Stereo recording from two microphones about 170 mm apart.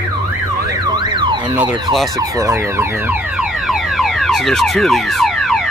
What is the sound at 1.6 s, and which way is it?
Ambulance, 25° right (ahead or behind).